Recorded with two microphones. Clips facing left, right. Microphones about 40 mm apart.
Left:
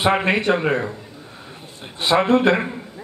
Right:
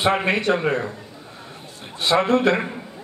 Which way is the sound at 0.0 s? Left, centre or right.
Centre.